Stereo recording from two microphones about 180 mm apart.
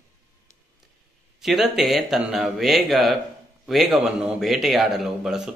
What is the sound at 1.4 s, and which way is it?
A man's voice, centre (ahead or behind).